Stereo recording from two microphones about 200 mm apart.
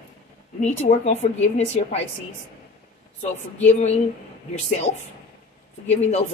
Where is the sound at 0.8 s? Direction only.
35° left (ahead or behind).